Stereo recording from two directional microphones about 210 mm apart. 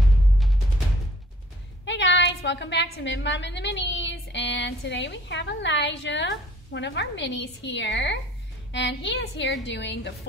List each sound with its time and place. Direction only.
1.9 s a woman's voice: 55° left (ahead or behind)